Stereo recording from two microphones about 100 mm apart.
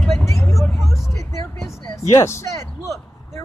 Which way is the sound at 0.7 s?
Centre (ahead or behind).